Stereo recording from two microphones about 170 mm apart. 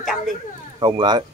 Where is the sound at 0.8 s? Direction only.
25° right (ahead or behind).